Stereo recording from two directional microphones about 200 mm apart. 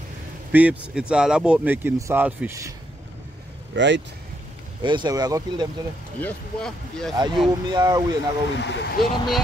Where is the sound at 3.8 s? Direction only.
65° right (ahead or behind).